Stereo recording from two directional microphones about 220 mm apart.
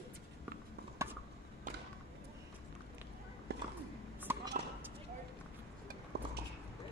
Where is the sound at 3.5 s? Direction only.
50° right (ahead or behind).